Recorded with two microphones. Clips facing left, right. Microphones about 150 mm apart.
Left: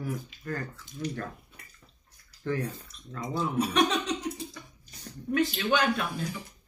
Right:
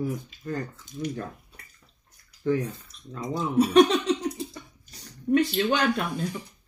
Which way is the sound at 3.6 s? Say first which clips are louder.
Right 9 dB; 35° right (ahead or behind).